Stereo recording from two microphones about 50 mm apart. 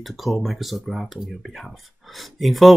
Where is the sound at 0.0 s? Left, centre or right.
Centre.